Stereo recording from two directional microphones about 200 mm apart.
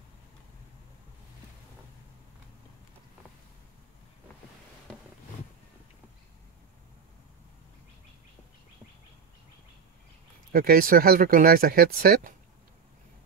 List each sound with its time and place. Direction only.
10.5 s speech: 45° right (ahead or behind)